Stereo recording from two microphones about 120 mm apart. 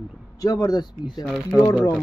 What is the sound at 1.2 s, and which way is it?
Speech, centre (ahead or behind).